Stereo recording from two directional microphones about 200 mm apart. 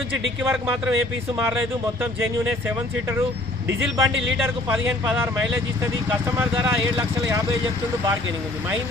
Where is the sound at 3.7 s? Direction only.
65° right (ahead or behind).